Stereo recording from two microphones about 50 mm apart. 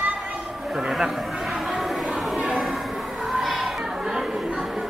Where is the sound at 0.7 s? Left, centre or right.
Centre.